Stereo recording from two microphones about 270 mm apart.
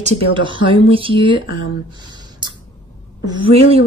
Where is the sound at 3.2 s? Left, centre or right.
Right.